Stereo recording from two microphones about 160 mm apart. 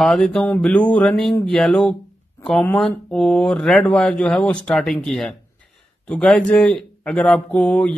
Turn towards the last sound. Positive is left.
turn(degrees=5)  # may be behind; listen again after turning